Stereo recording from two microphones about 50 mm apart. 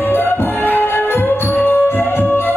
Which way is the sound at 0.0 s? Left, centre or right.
Left.